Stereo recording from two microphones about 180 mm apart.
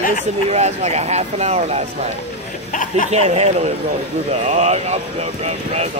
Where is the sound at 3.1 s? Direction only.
35° right (ahead or behind).